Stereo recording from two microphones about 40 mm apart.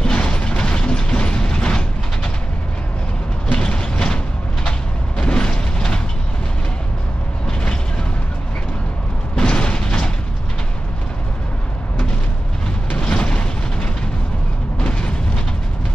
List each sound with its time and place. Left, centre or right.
0.0 s mechanisms: left
3.6 s mechanisms: left
4.6 s vehicle: left
9.3 s mechanisms: left
13.0 s a sound: left
14.9 s vehicle: left